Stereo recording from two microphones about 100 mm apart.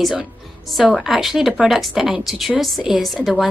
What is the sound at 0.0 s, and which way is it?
A woman's voice, 5° right (ahead or behind).